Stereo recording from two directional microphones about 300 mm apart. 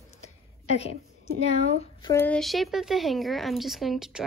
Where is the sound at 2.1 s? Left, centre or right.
Centre.